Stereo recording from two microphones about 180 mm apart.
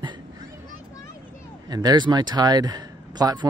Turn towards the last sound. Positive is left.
turn(degrees=-20)  # may be behind; listen again after turning